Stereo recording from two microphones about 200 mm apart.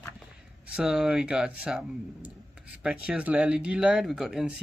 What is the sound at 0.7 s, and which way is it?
Speech, centre (ahead or behind).